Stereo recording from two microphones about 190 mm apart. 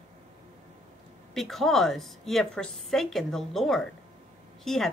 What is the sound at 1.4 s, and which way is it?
A woman's voice, centre (ahead or behind).